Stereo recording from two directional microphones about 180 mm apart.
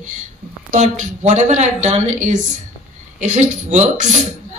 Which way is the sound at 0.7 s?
40° right (ahead or behind).